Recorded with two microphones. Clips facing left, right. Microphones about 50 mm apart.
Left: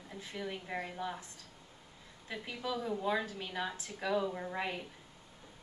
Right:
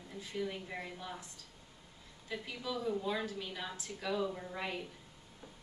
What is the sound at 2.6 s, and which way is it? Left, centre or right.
A woman's voice, centre.